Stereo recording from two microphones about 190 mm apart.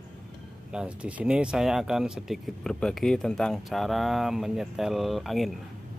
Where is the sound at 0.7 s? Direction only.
5° right (ahead or behind).